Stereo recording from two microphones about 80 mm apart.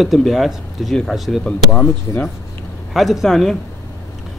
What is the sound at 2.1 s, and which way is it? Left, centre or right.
Speech, left.